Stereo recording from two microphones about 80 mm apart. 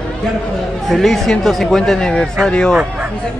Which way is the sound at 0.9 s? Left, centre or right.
Centre.